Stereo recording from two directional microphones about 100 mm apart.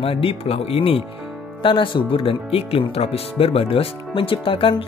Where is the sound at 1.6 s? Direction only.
55° left (ahead or behind).